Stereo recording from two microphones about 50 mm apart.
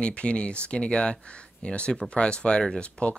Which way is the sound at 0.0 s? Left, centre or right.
Left.